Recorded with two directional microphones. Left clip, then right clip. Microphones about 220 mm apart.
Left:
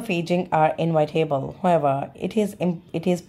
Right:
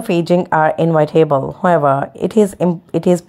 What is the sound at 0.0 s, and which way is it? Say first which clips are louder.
Speech: right 9 dB; 25° right (ahead or behind).